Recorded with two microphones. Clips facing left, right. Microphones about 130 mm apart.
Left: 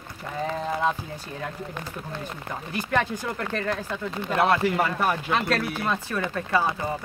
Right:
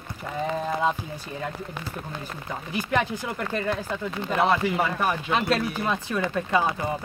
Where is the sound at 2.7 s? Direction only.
10° right (ahead or behind).